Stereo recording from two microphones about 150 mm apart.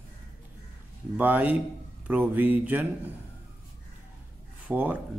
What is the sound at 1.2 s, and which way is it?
A man's voice, 10° right (ahead or behind).